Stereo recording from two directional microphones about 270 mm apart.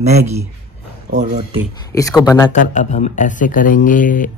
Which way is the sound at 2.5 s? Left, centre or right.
Left.